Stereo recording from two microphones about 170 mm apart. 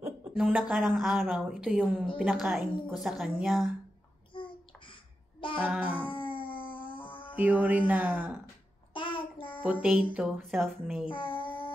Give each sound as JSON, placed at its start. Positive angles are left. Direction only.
{"t": 0.3, "sound": "a woman's voice", "side_deg": -5}
{"t": 4.3, "sound": "babbling", "side_deg": 30}
{"t": 5.6, "sound": "speech", "side_deg": -10}
{"t": 6.0, "sound": "dog", "side_deg": 30}
{"t": 7.1, "sound": "a sound", "side_deg": 30}
{"t": 7.3, "sound": "speech", "side_deg": -10}
{"t": 8.9, "sound": "child singing", "side_deg": 30}
{"t": 9.6, "sound": "a woman's voice", "side_deg": -5}
{"t": 11.1, "sound": "child singing", "side_deg": 30}